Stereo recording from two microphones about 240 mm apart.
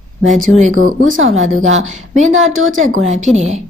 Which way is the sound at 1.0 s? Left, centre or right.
Right.